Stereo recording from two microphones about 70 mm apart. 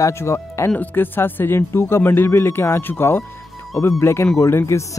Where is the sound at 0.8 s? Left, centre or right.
Left.